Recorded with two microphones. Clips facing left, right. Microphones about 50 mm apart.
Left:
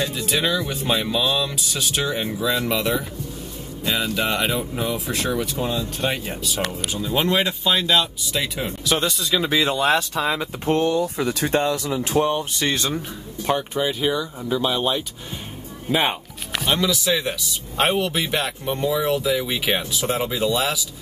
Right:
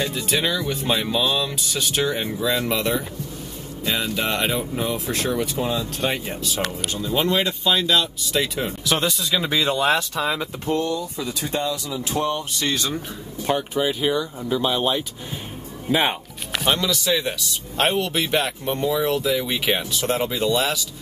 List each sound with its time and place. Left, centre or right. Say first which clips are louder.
0.0 s speech: even; centre
7.1 s speech: even; centre
10.7 s speech: left 4 dB; left
12.2 s speech: left 3 dB; centre
12.9 s speech: left 1 dB; centre